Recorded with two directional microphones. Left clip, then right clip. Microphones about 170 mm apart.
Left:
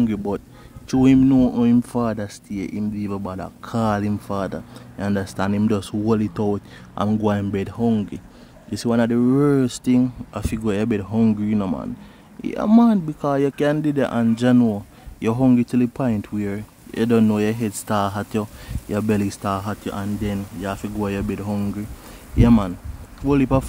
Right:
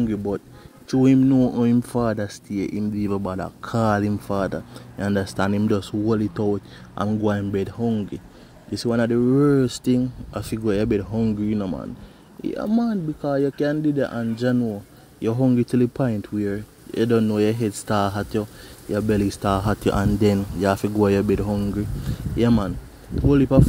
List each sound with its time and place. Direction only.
0.0 s speech: 15° left (ahead or behind)
1.8 s speech: centre (ahead or behind)
5.6 s speech: 10° left (ahead or behind)
12.4 s speech: 10° left (ahead or behind)
15.1 s speech: 15° left (ahead or behind)
15.5 s speech: centre (ahead or behind)
19.8 s speech: 30° right (ahead or behind)
21.5 s speech: centre (ahead or behind)
23.2 s speech: 5° left (ahead or behind)